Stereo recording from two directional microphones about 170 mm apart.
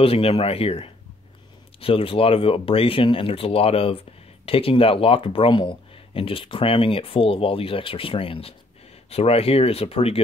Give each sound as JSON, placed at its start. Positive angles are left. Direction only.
{"t": 0.0, "sound": "speech", "side_deg": 35}